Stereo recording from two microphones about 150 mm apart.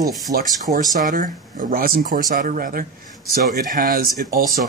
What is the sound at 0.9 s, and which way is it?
Speech, 60° right (ahead or behind).